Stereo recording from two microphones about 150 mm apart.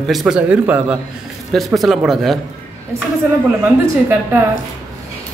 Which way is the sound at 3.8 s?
15° right (ahead or behind).